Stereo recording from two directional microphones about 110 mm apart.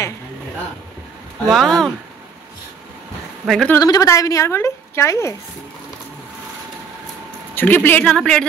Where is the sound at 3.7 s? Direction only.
35° left (ahead or behind).